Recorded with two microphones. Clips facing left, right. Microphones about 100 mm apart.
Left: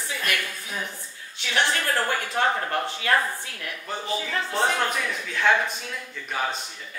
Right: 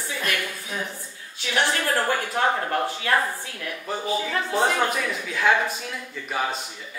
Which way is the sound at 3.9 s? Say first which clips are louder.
Right 3 dB; 5° right (ahead or behind).